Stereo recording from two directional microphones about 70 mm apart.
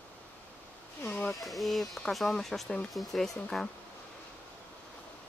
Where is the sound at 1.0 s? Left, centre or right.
Left.